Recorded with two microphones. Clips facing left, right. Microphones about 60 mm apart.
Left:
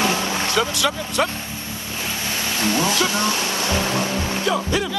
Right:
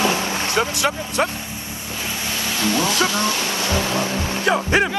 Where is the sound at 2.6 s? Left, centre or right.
Left.